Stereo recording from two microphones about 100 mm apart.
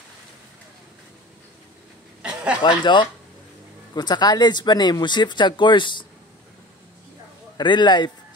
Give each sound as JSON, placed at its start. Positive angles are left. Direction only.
{"t": 2.2, "sound": "chuckle", "side_deg": -10}
{"t": 2.8, "sound": "speech", "side_deg": 50}
{"t": 7.5, "sound": "speech", "side_deg": 50}